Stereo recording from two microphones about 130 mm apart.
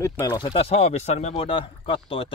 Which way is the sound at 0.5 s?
55° left (ahead or behind).